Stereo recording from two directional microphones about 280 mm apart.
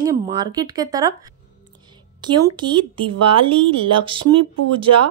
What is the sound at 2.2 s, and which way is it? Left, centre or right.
A woman's voice, centre.